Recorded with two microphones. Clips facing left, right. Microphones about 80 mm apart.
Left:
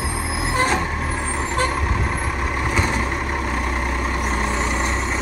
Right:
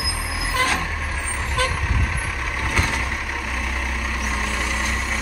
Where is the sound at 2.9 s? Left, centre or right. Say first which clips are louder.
Left 4 dB; left.